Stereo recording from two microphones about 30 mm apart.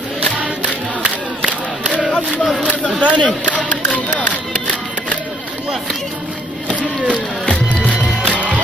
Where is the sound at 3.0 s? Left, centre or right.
Left.